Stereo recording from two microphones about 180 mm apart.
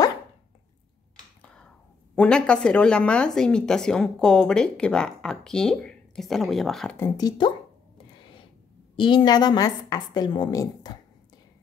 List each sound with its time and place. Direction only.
2.1 s speech: 5° left (ahead or behind)
7.0 s a woman's voice: 20° left (ahead or behind)
8.9 s a woman's voice: 25° left (ahead or behind)